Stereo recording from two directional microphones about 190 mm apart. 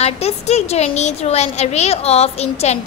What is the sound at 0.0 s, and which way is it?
Speech, 35° left (ahead or behind).